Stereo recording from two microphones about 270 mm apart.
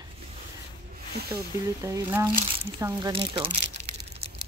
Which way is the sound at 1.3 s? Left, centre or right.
Centre.